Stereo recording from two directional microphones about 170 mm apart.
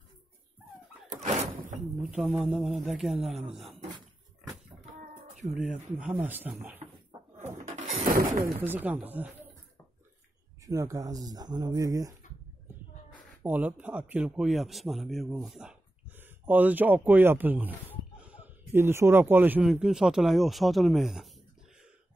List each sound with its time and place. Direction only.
1.0 s thunk: 45° right (ahead or behind)
2.0 s speech: 5° right (ahead or behind)
5.8 s speech: 10° right (ahead or behind)
7.3 s a sound: 45° right (ahead or behind)
8.5 s speech: 10° right (ahead or behind)
10.7 s speech: 20° right (ahead or behind)
13.4 s speech: 10° right (ahead or behind)